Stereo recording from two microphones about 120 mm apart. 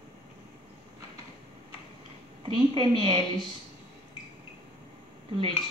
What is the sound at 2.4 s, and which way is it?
Speech, 45° right (ahead or behind).